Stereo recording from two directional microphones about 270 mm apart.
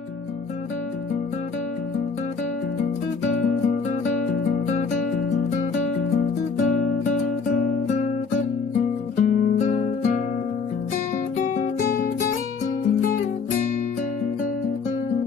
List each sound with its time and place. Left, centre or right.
9.1 s music: left
11.4 s music: left